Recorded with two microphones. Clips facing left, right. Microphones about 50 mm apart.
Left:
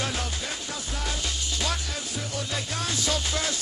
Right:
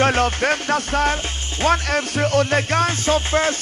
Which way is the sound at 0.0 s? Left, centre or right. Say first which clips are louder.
Right 14 dB; right.